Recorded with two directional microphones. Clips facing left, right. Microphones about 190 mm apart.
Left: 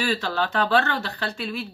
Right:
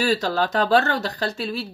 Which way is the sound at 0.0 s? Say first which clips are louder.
Right 4 dB; 40° right (ahead or behind).